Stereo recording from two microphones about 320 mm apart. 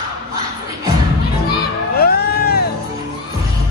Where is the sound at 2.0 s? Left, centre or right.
Left.